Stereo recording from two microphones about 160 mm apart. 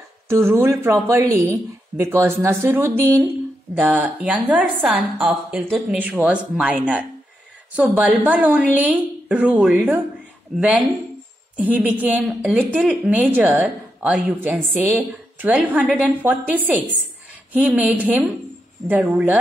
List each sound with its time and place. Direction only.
0.3 s a woman's voice: 15° right (ahead or behind)